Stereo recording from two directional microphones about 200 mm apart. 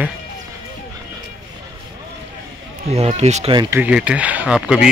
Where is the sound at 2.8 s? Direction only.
30° right (ahead or behind).